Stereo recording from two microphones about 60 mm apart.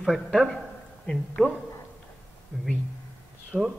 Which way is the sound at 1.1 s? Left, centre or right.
Left.